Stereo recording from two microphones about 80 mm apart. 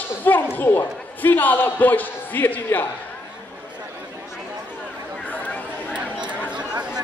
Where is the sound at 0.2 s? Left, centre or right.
Left.